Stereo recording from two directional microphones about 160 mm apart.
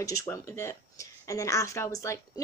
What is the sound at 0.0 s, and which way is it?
Speech, 20° left (ahead or behind).